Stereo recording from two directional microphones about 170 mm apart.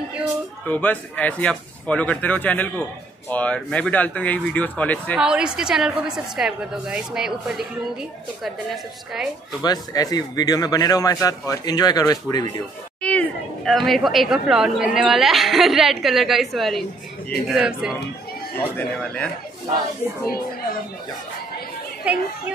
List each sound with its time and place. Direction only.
0.7 s speech: 10° left (ahead or behind)
5.1 s a woman's voice: 5° right (ahead or behind)
9.6 s a man's voice: 20° left (ahead or behind)
13.0 s a woman's voice: 5° left (ahead or behind)
18.8 s speech: 10° left (ahead or behind)
22.0 s a child's voice: 10° right (ahead or behind)